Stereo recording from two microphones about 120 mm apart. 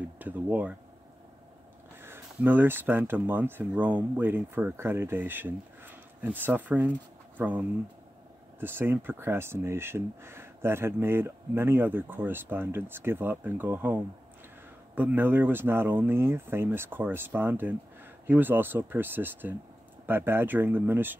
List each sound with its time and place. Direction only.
0.2 s speech: 15° right (ahead or behind)
2.0 s speech: 20° right (ahead or behind)
15.0 s speech: 15° right (ahead or behind)